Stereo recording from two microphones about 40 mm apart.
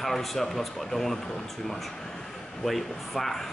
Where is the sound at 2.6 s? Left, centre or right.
Centre.